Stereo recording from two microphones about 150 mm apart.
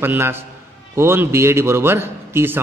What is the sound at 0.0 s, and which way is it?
A man's voice, 15° right (ahead or behind).